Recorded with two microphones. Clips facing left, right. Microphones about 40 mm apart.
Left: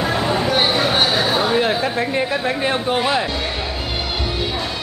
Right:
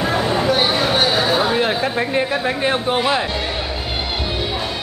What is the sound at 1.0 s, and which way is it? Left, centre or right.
Speech, centre.